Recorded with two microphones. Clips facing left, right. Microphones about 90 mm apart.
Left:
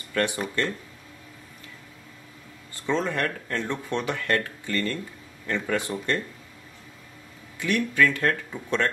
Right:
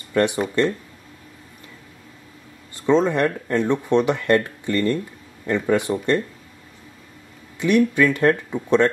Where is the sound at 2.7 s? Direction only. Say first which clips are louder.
Right 9 dB; 20° right (ahead or behind).